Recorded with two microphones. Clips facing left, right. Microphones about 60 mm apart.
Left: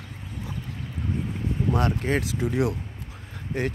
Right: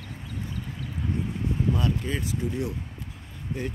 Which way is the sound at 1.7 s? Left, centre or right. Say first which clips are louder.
Left 4 dB; left.